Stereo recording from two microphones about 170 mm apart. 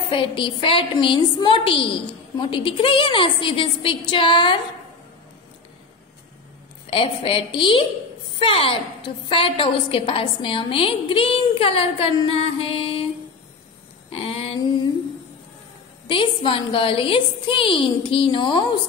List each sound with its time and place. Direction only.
0.1 s a woman's voice: 30° left (ahead or behind)
6.9 s a woman's voice: 30° left (ahead or behind)
14.1 s a woman's voice: 35° left (ahead or behind)
16.1 s a woman's voice: 30° left (ahead or behind)